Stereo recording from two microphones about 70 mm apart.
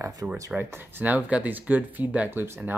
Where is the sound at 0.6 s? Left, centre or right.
Right.